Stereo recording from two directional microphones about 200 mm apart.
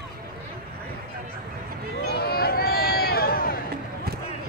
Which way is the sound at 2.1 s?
50° left (ahead or behind).